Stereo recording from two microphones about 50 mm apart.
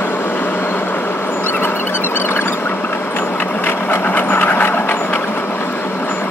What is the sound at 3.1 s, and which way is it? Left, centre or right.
Vehicle, left.